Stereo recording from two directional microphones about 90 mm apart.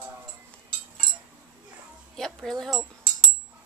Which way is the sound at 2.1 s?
5° left (ahead or behind).